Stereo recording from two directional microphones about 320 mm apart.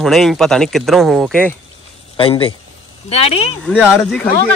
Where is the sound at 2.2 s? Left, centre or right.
Centre.